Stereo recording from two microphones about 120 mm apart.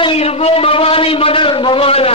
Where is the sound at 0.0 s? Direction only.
55° left (ahead or behind).